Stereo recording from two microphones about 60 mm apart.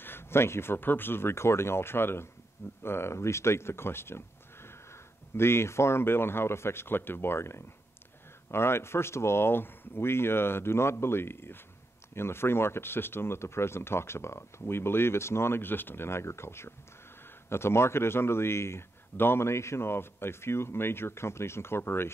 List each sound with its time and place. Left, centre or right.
0.0 s speech: left